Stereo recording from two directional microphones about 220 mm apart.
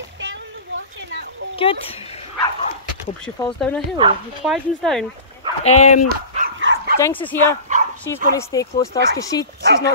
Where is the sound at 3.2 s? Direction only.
5° left (ahead or behind).